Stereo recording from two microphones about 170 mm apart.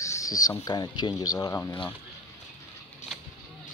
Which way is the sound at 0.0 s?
20° left (ahead or behind).